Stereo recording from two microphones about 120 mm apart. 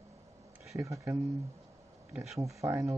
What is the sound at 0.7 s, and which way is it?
Speech, 25° right (ahead or behind).